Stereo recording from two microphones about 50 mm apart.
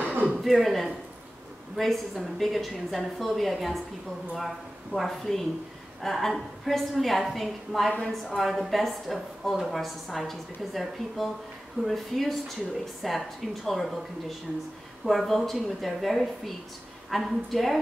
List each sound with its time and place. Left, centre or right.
0.0 s a sound: right
0.4 s a woman's voice: centre
15.0 s a woman's voice: centre